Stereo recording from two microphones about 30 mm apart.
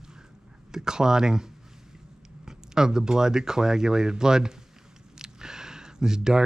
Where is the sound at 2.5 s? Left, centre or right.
Centre.